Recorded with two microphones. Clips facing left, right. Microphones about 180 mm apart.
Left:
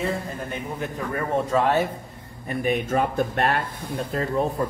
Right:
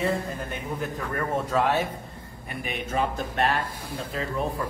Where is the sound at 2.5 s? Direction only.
40° left (ahead or behind).